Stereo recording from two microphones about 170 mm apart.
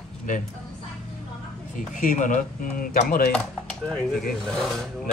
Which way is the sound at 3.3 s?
5° left (ahead or behind).